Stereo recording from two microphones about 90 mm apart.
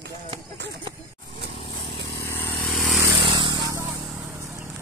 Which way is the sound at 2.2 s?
25° left (ahead or behind).